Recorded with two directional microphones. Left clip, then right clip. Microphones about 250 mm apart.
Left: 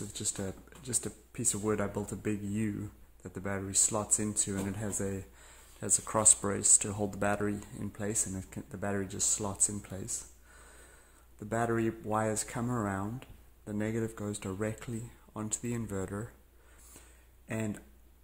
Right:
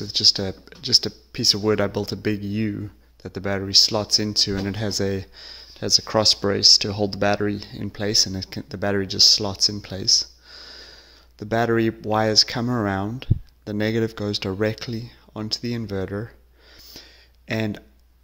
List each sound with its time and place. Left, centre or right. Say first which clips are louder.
0.3 s speech: right 18 dB; right
10.5 s snort: right 15 dB; right
11.3 s speech: right 11 dB; right
17.5 s speech: right 11 dB; right